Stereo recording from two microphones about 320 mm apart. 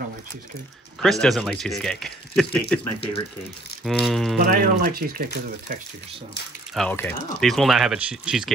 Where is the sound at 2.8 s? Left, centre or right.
Centre.